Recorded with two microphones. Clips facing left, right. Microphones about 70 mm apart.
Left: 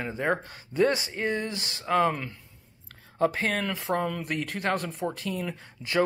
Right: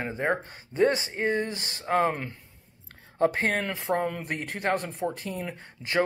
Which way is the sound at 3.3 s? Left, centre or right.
Right.